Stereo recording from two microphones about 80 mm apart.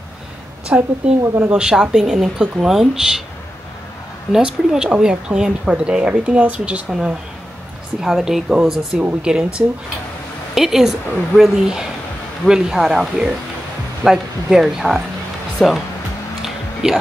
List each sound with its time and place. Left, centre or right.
0.7 s a woman's voice: centre
4.3 s a woman's voice: centre
16.4 s a sound: centre